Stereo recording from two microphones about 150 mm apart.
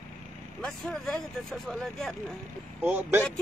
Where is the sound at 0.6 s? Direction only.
5° left (ahead or behind).